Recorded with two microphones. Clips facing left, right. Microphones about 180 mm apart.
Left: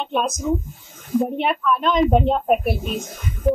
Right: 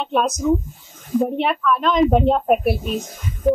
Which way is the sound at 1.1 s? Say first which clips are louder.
Right 1 dB; centre (ahead or behind).